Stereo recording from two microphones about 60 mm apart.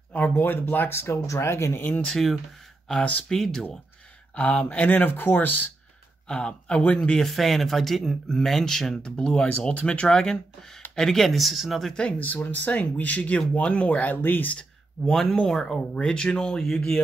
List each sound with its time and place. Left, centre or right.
0.1 s speech: left
2.0 s speech: centre
4.4 s speech: left
6.2 s speech: centre
7.2 s speech: centre
11.9 s speech: centre
12.3 s speech: left
14.6 s speech: centre